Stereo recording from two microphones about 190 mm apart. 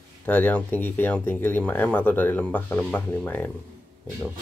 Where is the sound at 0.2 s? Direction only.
10° left (ahead or behind).